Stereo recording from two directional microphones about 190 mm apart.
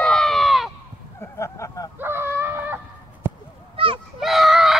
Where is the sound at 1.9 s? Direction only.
10° right (ahead or behind).